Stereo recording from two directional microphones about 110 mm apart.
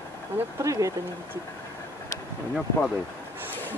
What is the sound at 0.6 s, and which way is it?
Speech, 30° right (ahead or behind).